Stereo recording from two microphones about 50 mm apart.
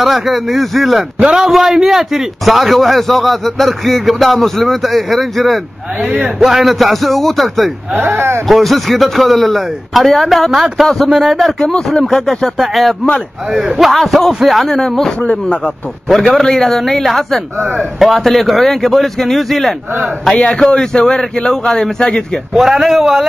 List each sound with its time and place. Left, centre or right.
0.0 s a man's voice: centre
1.2 s a man's voice: centre
6.0 s a man's voice: centre
6.4 s a man's voice: centre
7.9 s speech: right
8.5 s a man's voice: centre
11.6 s a man's voice: centre
12.5 s a man's voice: centre
14.8 s a man's voice: centre
20.3 s a man's voice: left
22.5 s a man's voice: centre